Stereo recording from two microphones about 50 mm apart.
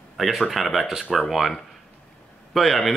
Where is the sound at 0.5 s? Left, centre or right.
Centre.